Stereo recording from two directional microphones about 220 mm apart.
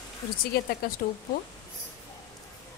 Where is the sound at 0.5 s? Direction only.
45° left (ahead or behind).